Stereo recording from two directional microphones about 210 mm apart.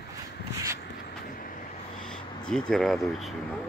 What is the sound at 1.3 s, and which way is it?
Vehicle, 40° left (ahead or behind).